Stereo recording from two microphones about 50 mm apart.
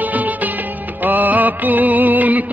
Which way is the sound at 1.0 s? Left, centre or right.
Right.